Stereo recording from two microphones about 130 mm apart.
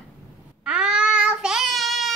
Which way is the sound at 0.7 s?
10° right (ahead or behind).